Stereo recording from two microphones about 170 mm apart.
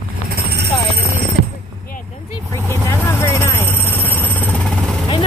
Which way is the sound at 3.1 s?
15° left (ahead or behind).